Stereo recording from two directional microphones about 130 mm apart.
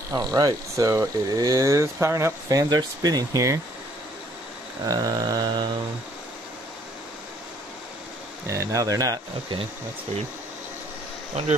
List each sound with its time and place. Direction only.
0.1 s speech: 30° right (ahead or behind)
4.8 s speech: 30° right (ahead or behind)
8.5 s speech: 25° right (ahead or behind)
11.3 s speech: 55° right (ahead or behind)